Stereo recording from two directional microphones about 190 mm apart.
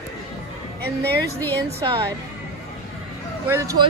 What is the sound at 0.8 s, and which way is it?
Speech, 55° right (ahead or behind).